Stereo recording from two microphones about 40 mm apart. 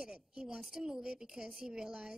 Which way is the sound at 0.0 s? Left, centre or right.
Centre.